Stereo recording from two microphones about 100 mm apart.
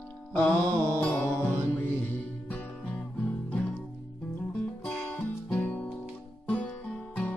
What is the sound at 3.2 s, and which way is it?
Music, 10° left (ahead or behind).